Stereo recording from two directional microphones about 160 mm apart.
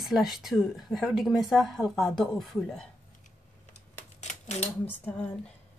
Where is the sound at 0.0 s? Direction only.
Centre (ahead or behind).